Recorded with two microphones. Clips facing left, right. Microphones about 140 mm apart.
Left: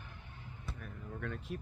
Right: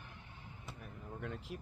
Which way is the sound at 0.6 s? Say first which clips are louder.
Left 3 dB; 20° right (ahead or behind).